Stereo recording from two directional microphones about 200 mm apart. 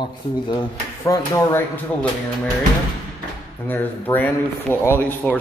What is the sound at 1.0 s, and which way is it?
Speech, 15° left (ahead or behind).